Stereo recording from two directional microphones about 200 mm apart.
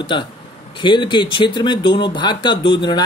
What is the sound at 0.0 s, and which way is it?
Speech, 25° left (ahead or behind).